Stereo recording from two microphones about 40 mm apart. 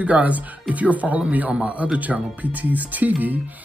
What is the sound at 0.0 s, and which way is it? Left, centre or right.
Speech, right.